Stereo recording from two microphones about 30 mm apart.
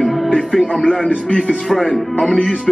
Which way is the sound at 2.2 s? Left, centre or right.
Left.